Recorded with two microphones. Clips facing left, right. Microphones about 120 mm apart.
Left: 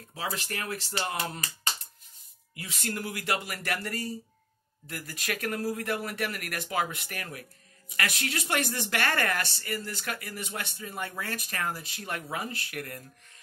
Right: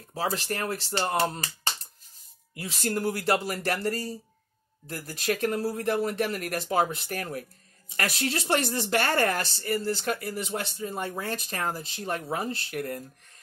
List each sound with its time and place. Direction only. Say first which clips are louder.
0.1 s speech: right 5 dB; 35° right (ahead or behind)